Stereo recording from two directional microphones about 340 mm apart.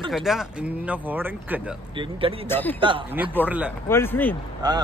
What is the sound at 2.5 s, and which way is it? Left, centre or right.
Speech, centre.